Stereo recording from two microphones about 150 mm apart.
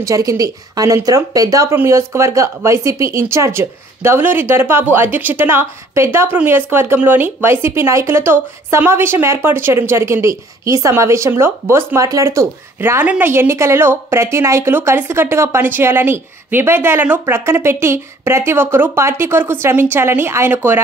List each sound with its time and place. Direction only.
0.0 s speech: 20° right (ahead or behind)